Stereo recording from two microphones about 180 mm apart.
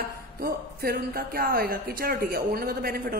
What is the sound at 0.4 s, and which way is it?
Speech, 55° right (ahead or behind).